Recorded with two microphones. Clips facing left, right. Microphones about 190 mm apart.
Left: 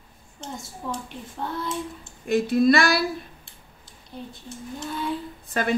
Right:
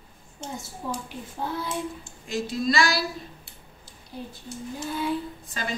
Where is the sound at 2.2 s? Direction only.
60° left (ahead or behind).